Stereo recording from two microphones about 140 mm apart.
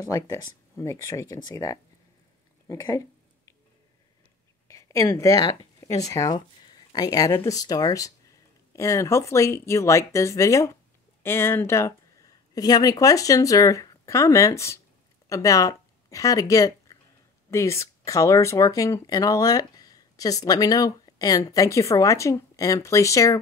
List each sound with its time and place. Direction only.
0.1 s speech: 20° left (ahead or behind)
4.6 s speech: 25° left (ahead or behind)